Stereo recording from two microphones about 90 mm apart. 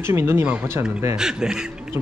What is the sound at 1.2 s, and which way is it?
Speech, 5° right (ahead or behind).